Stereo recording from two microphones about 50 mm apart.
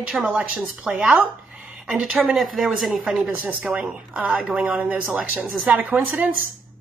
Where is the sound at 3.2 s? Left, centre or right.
Right.